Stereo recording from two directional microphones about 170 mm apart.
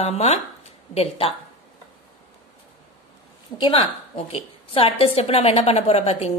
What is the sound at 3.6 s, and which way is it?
A woman's voice, 35° left (ahead or behind).